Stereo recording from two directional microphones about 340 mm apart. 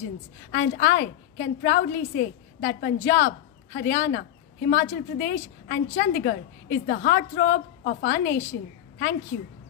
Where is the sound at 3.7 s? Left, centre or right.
Left.